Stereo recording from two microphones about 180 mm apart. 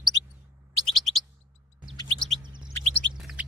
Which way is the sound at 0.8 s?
Centre (ahead or behind).